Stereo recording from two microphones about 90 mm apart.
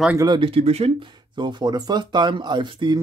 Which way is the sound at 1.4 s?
55° right (ahead or behind).